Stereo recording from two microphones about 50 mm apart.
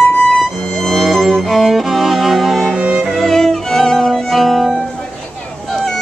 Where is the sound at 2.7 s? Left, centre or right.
Right.